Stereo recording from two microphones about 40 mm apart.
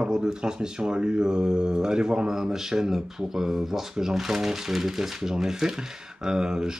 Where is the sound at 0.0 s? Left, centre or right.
Centre.